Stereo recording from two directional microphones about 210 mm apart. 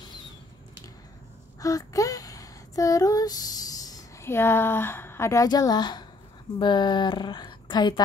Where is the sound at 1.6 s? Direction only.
15° left (ahead or behind).